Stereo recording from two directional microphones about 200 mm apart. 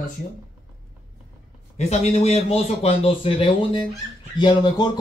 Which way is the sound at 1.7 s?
30° left (ahead or behind).